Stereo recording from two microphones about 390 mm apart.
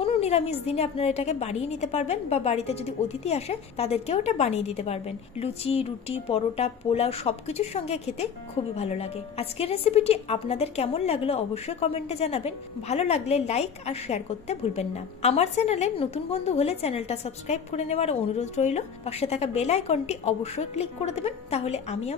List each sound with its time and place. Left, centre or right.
0.0 s a woman's voice: centre